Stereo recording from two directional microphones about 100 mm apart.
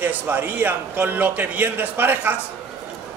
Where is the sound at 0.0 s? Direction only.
20° right (ahead or behind).